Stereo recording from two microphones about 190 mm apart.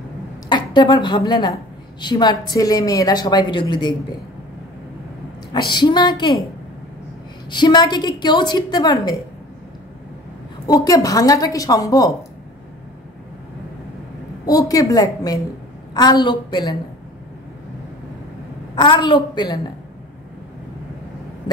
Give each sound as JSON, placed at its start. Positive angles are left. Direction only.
{"t": 0.5, "sound": "a woman's voice", "side_deg": 25}
{"t": 5.5, "sound": "a woman's voice", "side_deg": 25}
{"t": 7.5, "sound": "a woman's voice", "side_deg": 25}
{"t": 10.7, "sound": "a woman's voice", "side_deg": 20}
{"t": 14.4, "sound": "a woman's voice", "side_deg": 20}
{"t": 18.8, "sound": "a woman's voice", "side_deg": 25}